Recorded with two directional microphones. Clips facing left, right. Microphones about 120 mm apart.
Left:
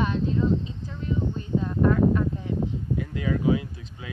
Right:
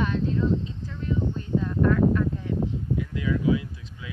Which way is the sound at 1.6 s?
20° left (ahead or behind).